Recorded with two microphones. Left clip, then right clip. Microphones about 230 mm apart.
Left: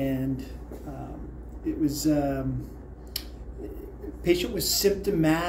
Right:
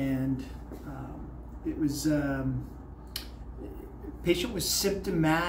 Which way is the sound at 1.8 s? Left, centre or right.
Centre.